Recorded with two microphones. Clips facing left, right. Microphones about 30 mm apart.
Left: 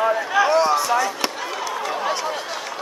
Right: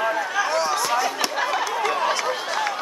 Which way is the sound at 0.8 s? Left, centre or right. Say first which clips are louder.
Left 2 dB; centre.